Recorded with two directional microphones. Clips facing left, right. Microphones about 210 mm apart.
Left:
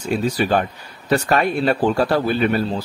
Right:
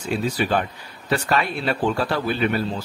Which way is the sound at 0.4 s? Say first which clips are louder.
Left 3 dB; 45° left (ahead or behind).